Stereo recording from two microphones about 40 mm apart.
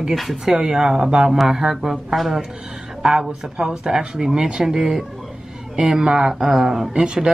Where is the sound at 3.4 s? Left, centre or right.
Centre.